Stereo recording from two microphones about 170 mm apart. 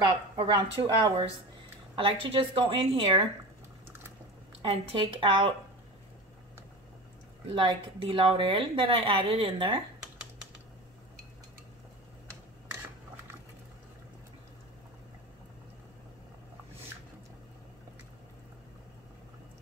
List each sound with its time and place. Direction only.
0.0 s speech: 25° right (ahead or behind)
4.6 s speech: 30° right (ahead or behind)
7.4 s speech: 30° right (ahead or behind)